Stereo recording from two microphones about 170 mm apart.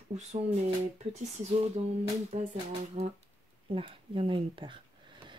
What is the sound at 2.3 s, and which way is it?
Music, 40° right (ahead or behind).